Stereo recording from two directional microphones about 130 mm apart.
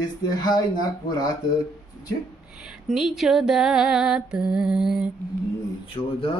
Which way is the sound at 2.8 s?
Centre (ahead or behind).